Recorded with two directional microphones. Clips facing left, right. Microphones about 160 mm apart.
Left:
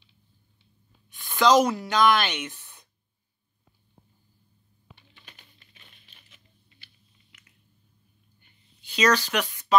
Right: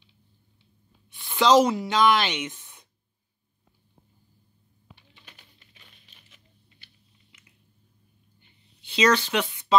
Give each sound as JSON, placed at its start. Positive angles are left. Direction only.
{"t": 1.1, "sound": "speech", "side_deg": -20}
{"t": 5.2, "sound": "typing", "side_deg": -5}
{"t": 8.4, "sound": "a sound", "side_deg": -25}